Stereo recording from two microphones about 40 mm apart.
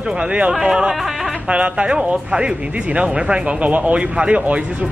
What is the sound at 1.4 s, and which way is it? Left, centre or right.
Speech, right.